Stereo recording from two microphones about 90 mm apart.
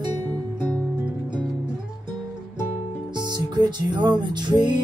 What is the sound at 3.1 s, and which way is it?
Music, 55° right (ahead or behind).